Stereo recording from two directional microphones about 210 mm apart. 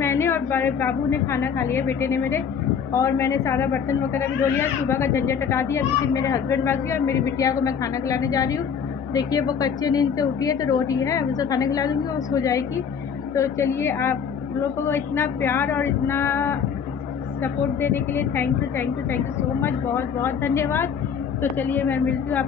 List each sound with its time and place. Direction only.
0.0 s a woman's voice: 10° left (ahead or behind)